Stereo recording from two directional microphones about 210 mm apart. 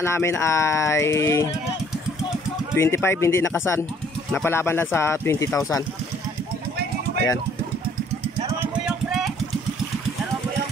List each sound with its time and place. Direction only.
0.0 s speech: 10° left (ahead or behind)
2.7 s speech: 10° left (ahead or behind)
8.4 s a sound: 15° right (ahead or behind)